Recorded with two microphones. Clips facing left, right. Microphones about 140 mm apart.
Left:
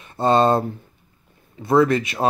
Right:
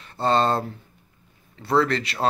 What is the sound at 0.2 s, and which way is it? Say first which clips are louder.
Speech: left 4 dB; 15° left (ahead or behind).